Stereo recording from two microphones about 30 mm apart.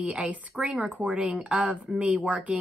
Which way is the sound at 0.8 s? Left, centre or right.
Right.